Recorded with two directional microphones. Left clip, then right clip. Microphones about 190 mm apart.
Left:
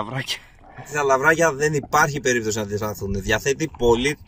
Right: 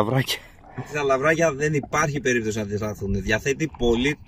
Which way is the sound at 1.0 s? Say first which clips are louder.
Left 3 dB; 20° right (ahead or behind).